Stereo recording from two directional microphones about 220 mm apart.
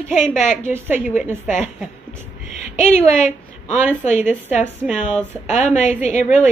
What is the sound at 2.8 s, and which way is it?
A woman's voice, 30° left (ahead or behind).